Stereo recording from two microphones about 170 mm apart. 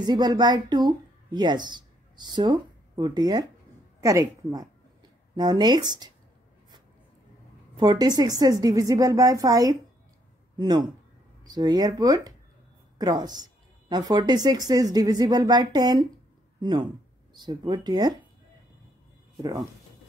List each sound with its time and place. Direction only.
0.0 s speech: 25° right (ahead or behind)
7.7 s a woman's voice: 25° right (ahead or behind)